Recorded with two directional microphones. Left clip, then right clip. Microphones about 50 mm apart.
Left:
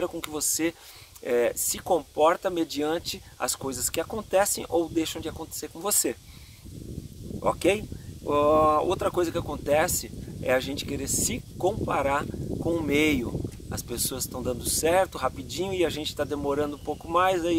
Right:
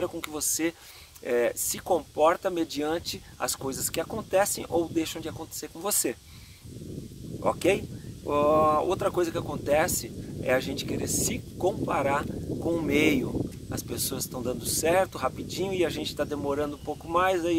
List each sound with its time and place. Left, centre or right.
0.0 s speech: left
7.4 s speech: centre
17.1 s speech: left